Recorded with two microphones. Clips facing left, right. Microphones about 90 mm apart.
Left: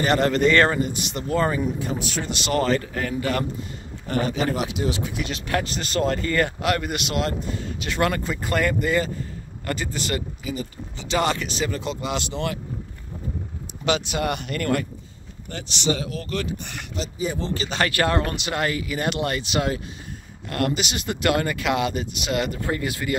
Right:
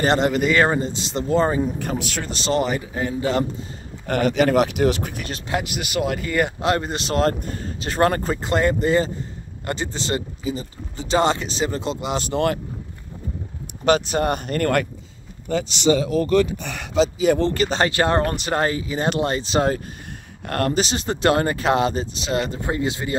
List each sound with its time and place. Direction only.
0.3 s speech: 5° right (ahead or behind)
0.7 s speech: 25° right (ahead or behind)
1.8 s speech: 75° right (ahead or behind)
2.2 s speech: 35° right (ahead or behind)
2.5 s speech: 15° right (ahead or behind)
4.1 s speech: 70° right (ahead or behind); by 5.4 s 45° right (ahead or behind)
5.5 s speech: 10° right (ahead or behind)
6.6 s speech: 30° right (ahead or behind)
8.4 s speech: 25° right (ahead or behind)
12.3 s speech: 50° right (ahead or behind)
13.8 s speech: 40° right (ahead or behind)
16.9 s speech: 90° right; by 17.6 s 65° right (ahead or behind)
17.6 s speech: 30° right (ahead or behind)
18.2 s speech: 40° right (ahead or behind)